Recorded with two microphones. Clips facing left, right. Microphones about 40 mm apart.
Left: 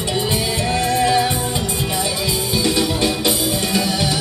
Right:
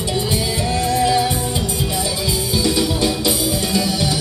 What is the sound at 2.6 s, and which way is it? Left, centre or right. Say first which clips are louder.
Music: even; centre.